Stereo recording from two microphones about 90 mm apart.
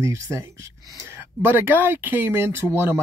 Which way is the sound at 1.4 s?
25° right (ahead or behind).